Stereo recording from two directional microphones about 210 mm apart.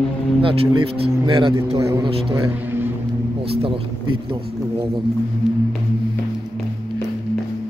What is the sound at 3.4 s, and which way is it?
A man's voice, 25° right (ahead or behind).